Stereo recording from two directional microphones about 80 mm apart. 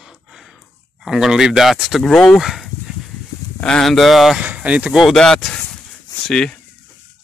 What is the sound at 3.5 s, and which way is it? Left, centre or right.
Speech, centre.